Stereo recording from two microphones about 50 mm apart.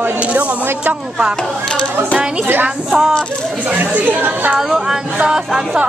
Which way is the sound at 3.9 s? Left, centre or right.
Right.